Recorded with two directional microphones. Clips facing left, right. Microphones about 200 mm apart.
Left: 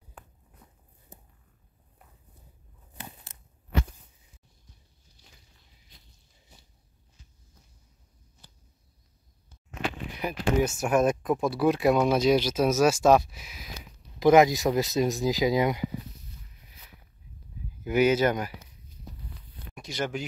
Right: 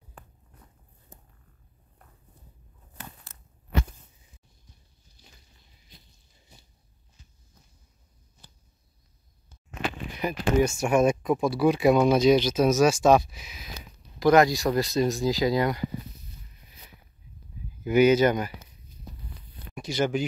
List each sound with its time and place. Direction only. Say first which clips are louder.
1.1 s hum: left 1 dB; 15° left (ahead or behind)
2.9 s a sound: left 1 dB; 15° left (ahead or behind)
10.1 s speech: right 3 dB; 5° left (ahead or behind)
14.2 s speech: left 1 dB; 20° left (ahead or behind)
17.8 s speech: right 3 dB; 5° left (ahead or behind)
19.7 s speech: right 6 dB; centre (ahead or behind)